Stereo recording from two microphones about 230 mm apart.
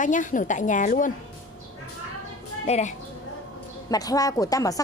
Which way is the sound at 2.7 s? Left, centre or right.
Left.